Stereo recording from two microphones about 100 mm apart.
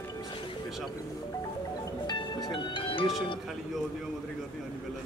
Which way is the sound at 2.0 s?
50° left (ahead or behind).